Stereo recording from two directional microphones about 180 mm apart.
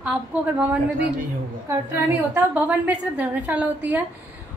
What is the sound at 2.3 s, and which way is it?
A woman's voice, 10° right (ahead or behind).